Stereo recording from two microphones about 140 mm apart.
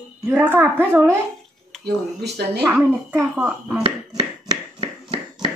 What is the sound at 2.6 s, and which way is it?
A woman's voice, 15° right (ahead or behind).